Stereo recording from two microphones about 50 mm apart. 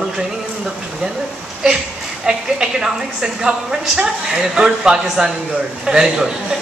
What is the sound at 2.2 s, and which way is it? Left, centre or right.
A man's voice, centre.